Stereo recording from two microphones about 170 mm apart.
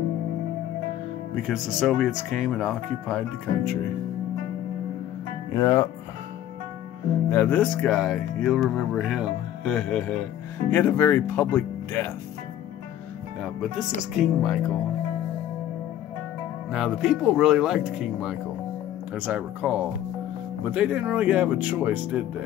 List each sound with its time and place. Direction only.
1.3 s speech: centre (ahead or behind)
5.5 s speech: 20° left (ahead or behind)
7.2 s speech: 10° left (ahead or behind)
13.4 s speech: centre (ahead or behind)
16.7 s speech: centre (ahead or behind)